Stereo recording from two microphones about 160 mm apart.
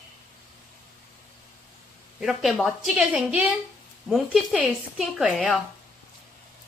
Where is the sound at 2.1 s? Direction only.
Centre (ahead or behind).